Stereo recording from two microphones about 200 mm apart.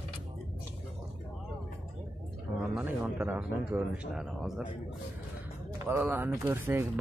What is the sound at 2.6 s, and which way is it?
Speech, 5° right (ahead or behind).